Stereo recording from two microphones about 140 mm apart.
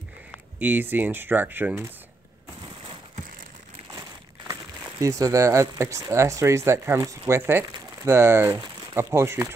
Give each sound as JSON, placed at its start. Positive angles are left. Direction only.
{"t": 0.6, "sound": "speech", "side_deg": -15}
{"t": 4.5, "sound": "speech", "side_deg": -20}